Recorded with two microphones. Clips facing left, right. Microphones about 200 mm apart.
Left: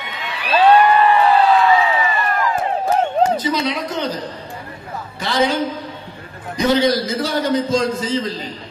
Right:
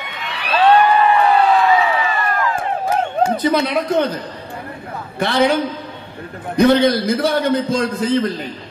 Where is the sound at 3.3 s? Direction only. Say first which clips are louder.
Right 4 dB; 55° right (ahead or behind).